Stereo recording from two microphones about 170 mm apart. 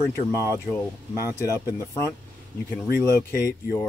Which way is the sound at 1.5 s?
20° left (ahead or behind).